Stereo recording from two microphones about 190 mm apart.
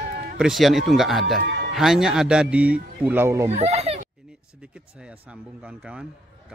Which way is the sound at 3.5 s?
35° right (ahead or behind).